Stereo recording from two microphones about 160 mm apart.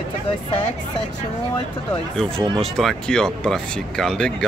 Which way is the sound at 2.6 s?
Centre (ahead or behind).